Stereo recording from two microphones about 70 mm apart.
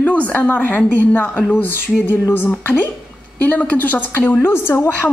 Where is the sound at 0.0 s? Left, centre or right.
Left.